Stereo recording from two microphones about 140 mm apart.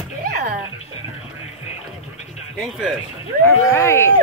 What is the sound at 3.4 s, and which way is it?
Speech, 20° left (ahead or behind).